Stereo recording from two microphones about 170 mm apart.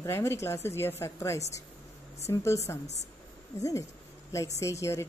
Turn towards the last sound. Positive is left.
turn(degrees=15)  # may be behind; listen again after turning